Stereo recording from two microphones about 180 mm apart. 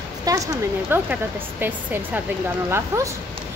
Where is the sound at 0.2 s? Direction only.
20° right (ahead or behind).